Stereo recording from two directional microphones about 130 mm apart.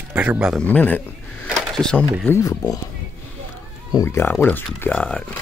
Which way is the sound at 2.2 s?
20° left (ahead or behind).